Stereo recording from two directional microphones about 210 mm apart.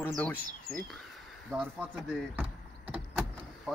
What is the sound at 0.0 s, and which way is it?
Speech, 10° left (ahead or behind).